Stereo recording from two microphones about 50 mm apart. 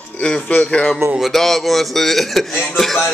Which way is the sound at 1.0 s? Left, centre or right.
Right.